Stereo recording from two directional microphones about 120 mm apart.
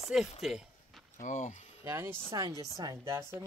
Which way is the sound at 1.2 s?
90° left.